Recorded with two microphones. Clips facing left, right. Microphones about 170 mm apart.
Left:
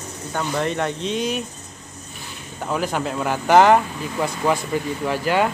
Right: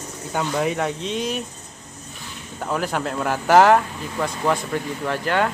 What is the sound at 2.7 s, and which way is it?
Speech, centre (ahead or behind).